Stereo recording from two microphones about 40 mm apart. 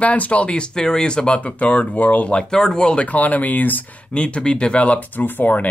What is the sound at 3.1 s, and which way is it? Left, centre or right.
Speech, left.